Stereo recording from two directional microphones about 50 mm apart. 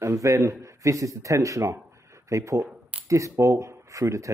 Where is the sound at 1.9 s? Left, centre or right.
Right.